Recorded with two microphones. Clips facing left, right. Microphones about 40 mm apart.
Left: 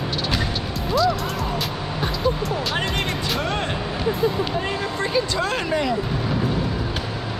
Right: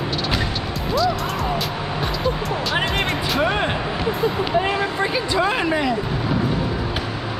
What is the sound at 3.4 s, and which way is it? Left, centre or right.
Speech, centre.